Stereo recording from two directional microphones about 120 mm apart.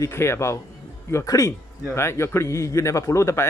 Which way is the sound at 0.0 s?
20° left (ahead or behind).